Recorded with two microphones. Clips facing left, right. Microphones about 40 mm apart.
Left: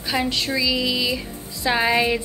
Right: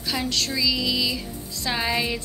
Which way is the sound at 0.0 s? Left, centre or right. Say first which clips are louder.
Left 3 dB; centre.